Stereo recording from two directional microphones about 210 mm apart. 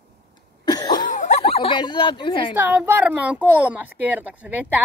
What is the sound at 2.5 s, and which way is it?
A woman's voice, 10° right (ahead or behind).